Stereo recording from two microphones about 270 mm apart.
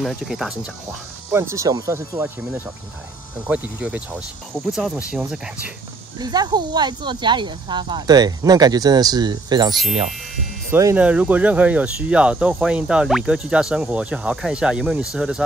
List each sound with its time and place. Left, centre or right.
0.0 s speech: centre
3.4 s speech: centre
6.1 s speech: centre